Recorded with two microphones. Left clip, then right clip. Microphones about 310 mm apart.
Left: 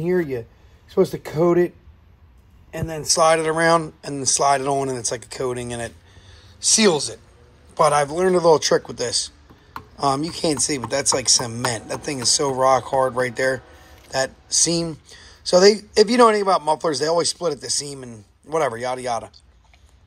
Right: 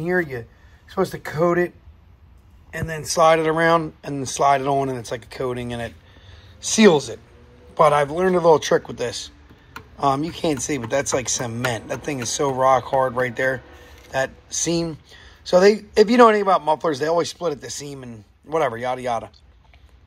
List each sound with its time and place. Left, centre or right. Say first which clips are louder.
0.0 s speech: left 1 dB; centre
2.7 s a man's voice: even; centre
3.1 s speech: right 1 dB; centre